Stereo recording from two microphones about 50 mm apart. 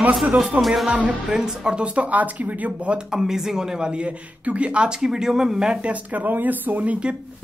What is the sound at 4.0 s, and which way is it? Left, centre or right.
Speech, right.